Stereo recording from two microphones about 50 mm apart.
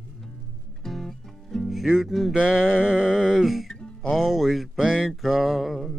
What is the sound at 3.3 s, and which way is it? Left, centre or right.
Speech, centre.